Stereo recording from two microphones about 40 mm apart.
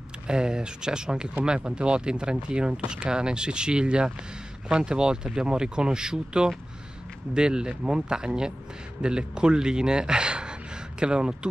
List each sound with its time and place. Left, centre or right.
0.3 s speech: right